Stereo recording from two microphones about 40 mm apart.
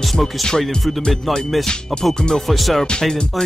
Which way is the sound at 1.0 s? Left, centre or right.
Centre.